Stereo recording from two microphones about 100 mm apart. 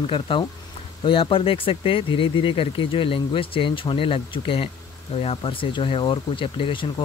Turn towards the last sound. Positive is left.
turn(degrees=60)  # may be behind; listen again after turning